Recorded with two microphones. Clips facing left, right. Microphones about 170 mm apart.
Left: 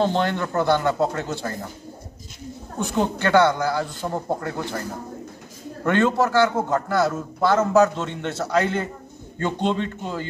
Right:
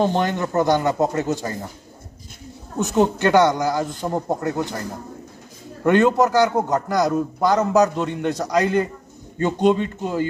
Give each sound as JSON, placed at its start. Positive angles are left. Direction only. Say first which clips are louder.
{"t": 0.0, "sound": "a man's voice", "louder": "right 1 dB", "side_deg": -15}
{"t": 3.0, "sound": "a man's voice", "louder": "right 2 dB", "side_deg": -20}
{"t": 5.9, "sound": "a man's voice", "louder": "right 4 dB", "side_deg": -15}